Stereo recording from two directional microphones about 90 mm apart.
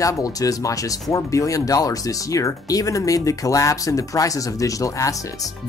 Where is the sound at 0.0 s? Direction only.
40° left (ahead or behind).